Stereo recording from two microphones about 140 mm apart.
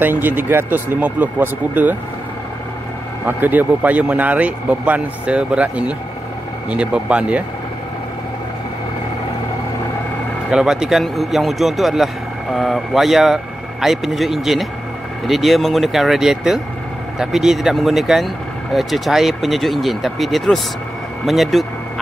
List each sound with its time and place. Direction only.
0.0 s speech: 15° right (ahead or behind)
3.3 s speech: 15° right (ahead or behind)
10.5 s speech: 5° right (ahead or behind)